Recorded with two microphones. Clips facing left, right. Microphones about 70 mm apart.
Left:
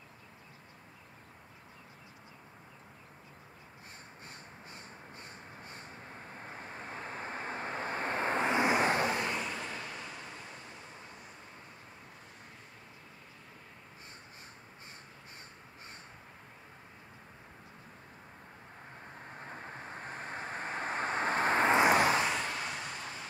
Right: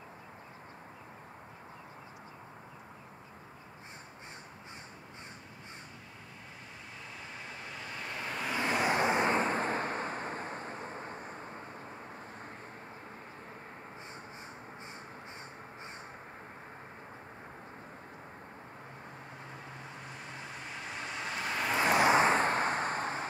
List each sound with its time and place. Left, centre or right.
6.8 s vehicle: left
9.0 s vehicle: right
19.4 s vehicle: left
22.1 s vehicle: right